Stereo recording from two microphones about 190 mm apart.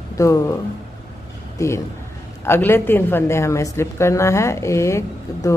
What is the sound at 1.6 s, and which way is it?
A woman's voice, 15° left (ahead or behind).